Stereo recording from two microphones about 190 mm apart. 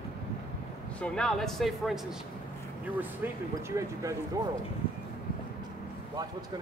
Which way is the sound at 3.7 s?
15° right (ahead or behind).